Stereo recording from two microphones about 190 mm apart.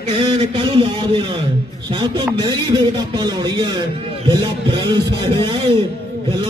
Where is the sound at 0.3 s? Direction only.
25° right (ahead or behind).